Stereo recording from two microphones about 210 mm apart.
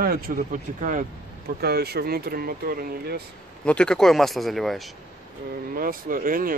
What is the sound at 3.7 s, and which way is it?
Speech, 5° left (ahead or behind).